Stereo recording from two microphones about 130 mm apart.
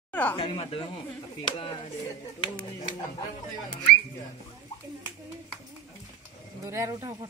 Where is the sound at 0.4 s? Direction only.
45° left (ahead or behind).